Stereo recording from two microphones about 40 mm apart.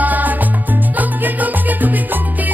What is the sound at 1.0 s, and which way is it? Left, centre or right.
Salsa music, right.